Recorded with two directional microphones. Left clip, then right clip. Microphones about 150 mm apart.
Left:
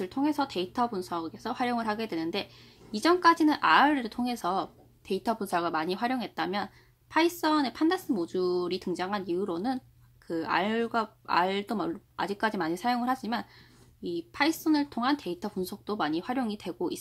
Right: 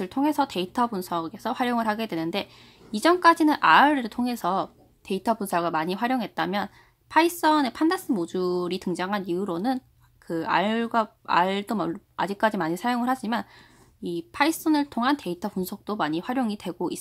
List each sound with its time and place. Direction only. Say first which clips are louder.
0.0 s speech: right 5 dB; 40° right (ahead or behind)